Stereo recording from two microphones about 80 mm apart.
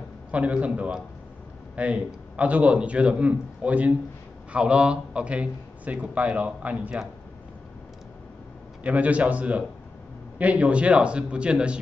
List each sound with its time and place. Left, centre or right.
0.3 s a man's voice: centre
8.8 s a man's voice: centre